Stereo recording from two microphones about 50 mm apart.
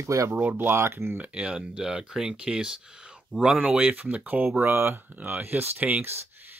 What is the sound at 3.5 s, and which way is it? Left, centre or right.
Speech, right.